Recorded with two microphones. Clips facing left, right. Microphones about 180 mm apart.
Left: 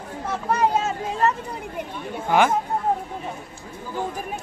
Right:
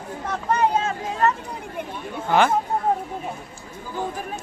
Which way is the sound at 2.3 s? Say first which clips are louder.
Even; 15° left (ahead or behind).